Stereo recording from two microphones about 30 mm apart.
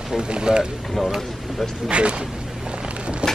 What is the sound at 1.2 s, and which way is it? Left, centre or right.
Speech, centre.